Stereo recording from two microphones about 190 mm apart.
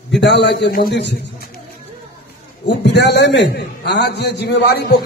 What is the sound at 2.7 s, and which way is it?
A man's voice, 65° left (ahead or behind).